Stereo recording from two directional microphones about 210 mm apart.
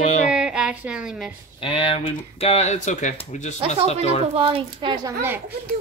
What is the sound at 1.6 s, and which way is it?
Speech, 25° left (ahead or behind).